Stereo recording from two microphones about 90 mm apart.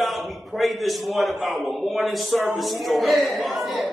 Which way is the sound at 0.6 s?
Centre (ahead or behind).